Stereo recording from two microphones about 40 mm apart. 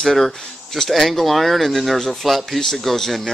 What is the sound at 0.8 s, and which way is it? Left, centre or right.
Speech, centre.